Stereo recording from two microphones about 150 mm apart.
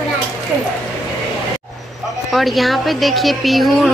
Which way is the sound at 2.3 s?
Centre (ahead or behind).